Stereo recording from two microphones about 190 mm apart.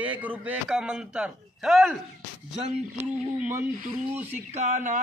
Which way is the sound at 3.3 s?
10° right (ahead or behind).